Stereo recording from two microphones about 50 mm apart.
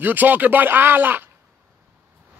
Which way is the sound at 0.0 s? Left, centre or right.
Right.